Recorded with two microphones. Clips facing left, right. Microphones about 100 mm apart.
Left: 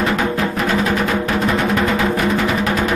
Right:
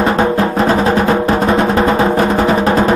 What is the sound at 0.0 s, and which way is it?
Music, 35° right (ahead or behind).